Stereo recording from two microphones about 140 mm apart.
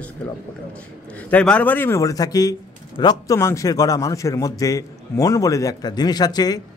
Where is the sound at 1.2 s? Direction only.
10° left (ahead or behind).